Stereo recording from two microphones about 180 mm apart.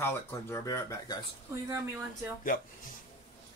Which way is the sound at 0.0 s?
15° left (ahead or behind).